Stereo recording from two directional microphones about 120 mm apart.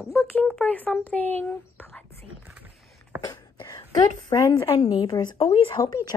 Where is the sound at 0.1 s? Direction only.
20° left (ahead or behind).